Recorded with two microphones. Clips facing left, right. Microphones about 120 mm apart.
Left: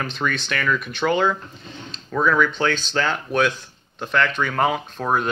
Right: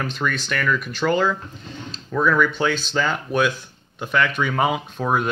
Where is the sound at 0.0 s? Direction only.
5° right (ahead or behind).